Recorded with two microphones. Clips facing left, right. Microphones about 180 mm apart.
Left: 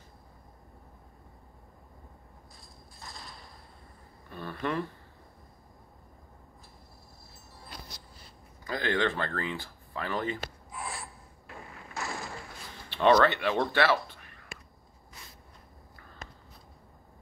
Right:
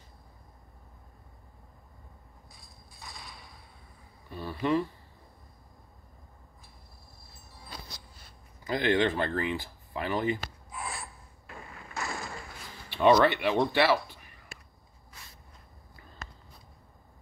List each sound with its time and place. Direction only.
4.3 s speech: 10° right (ahead or behind)
8.6 s speech: 20° right (ahead or behind)
10.8 s filing: 5° left (ahead or behind)
11.9 s boat: 5° left (ahead or behind)
12.9 s speech: 15° right (ahead or behind)